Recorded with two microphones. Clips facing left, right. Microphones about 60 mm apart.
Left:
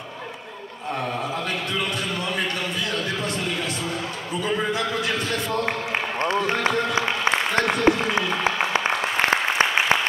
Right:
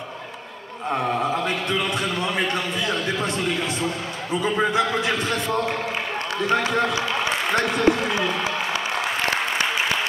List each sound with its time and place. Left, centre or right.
0.9 s a man's voice: right
4.4 s a man's voice: right
6.2 s a sound: left